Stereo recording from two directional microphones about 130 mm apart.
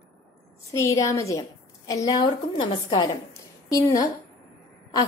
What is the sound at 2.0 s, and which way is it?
A woman's voice, 35° left (ahead or behind).